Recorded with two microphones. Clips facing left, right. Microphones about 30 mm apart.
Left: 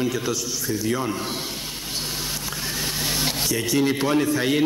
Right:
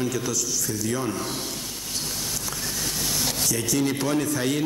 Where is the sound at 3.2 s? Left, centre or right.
Left.